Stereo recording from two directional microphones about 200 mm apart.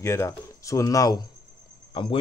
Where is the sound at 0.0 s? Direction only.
15° left (ahead or behind).